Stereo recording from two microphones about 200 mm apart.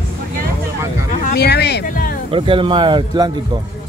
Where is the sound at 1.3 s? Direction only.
55° left (ahead or behind).